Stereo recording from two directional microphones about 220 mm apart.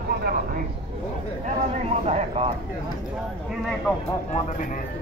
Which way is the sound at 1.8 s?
30° right (ahead or behind).